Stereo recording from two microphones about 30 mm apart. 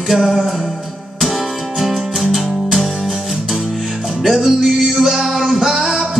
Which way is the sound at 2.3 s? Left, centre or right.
Centre.